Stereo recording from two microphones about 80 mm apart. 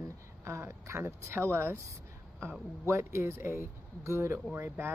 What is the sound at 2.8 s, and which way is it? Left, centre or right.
Speech, right.